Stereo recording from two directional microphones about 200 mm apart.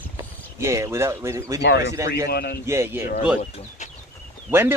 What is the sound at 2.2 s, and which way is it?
Speech, 50° left (ahead or behind).